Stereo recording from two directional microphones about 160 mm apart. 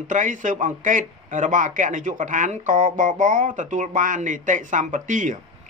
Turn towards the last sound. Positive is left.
turn(degrees=-55)  # may be behind; listen again after turning